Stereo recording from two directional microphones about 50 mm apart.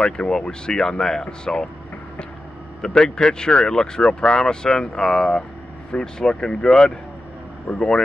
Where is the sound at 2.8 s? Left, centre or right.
Centre.